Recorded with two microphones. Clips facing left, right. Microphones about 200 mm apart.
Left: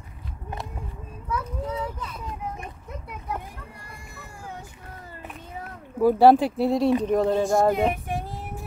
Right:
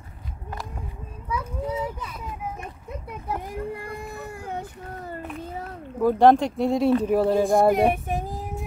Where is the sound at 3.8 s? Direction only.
60° right (ahead or behind).